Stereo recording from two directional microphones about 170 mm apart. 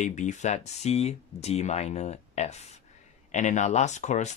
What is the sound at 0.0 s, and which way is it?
Speech, 45° left (ahead or behind).